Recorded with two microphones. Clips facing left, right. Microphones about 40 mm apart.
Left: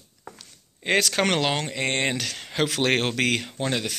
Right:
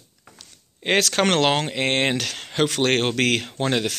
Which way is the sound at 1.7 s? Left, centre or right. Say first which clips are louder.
Right 4 dB; centre.